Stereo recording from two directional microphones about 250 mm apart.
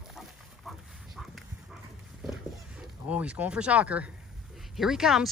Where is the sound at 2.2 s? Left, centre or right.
Centre.